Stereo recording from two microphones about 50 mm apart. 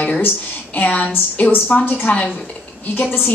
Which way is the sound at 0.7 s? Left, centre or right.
Left.